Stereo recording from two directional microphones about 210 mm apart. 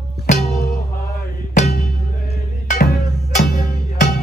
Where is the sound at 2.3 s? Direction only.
50° left (ahead or behind).